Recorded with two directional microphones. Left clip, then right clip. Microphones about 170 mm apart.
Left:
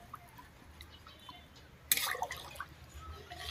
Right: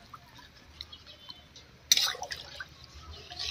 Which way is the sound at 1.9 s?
5° left (ahead or behind).